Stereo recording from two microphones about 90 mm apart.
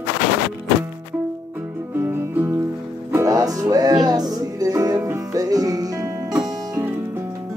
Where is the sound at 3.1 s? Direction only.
35° right (ahead or behind).